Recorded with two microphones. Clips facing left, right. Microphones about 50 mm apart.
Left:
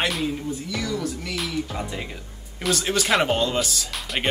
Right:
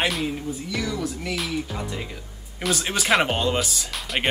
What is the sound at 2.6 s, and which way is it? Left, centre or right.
Speech, centre.